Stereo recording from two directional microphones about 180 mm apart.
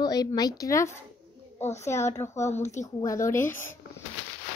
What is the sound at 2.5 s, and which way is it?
Speech, 40° left (ahead or behind).